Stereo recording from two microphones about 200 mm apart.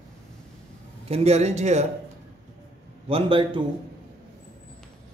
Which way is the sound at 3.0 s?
25° right (ahead or behind).